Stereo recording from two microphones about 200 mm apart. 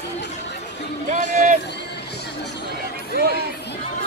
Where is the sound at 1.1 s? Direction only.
40° right (ahead or behind).